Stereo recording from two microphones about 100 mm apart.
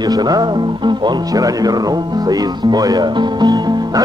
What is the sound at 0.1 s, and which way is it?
Speech, 40° right (ahead or behind).